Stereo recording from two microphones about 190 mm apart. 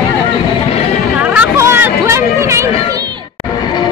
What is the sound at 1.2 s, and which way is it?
Chatter, 5° right (ahead or behind).